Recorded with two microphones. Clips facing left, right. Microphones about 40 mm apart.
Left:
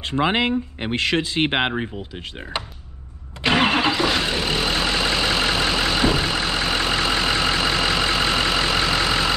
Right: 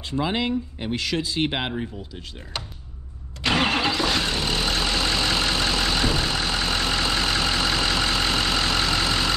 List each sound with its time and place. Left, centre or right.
0.0 s speech: left
2.5 s speech: left
3.4 s vehicle: centre